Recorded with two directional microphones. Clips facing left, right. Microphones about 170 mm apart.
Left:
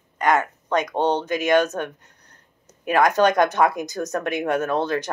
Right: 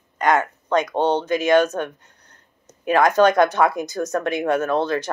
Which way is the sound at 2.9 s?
15° left (ahead or behind).